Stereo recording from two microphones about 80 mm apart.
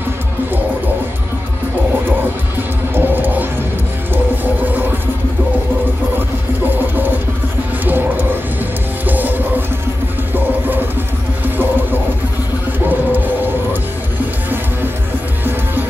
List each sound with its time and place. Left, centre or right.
2.9 s music: right
7.8 s music: right
11.4 s music: right